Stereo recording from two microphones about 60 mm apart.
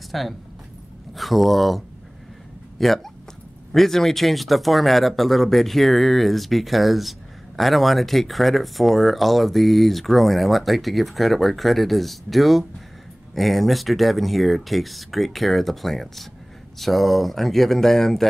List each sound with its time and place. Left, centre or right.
0.1 s speech: centre
2.8 s speech: centre